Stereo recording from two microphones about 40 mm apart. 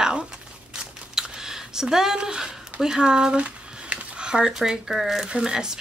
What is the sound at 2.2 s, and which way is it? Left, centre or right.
Speech, centre.